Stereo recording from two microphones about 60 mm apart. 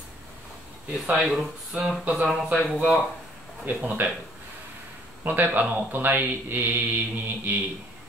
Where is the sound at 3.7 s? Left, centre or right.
Right.